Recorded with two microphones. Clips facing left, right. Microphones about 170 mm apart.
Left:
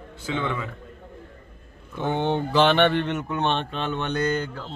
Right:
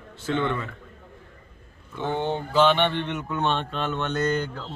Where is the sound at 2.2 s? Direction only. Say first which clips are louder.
Left 1 dB; 70° left (ahead or behind).